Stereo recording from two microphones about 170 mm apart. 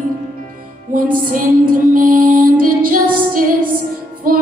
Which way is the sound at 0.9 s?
55° right (ahead or behind).